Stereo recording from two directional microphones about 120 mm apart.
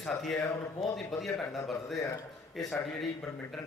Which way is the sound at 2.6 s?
Centre (ahead or behind).